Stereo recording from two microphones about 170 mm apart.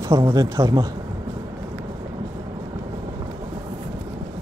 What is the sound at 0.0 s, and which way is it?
Speech, 20° right (ahead or behind).